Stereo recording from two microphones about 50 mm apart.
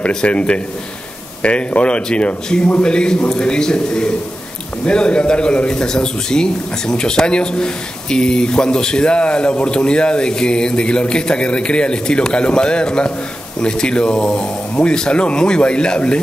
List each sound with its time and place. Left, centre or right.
0.1 s a man's voice: centre